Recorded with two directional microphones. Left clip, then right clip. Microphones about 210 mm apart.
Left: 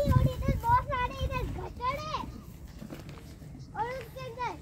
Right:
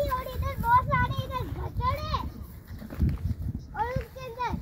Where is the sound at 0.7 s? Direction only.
10° left (ahead or behind).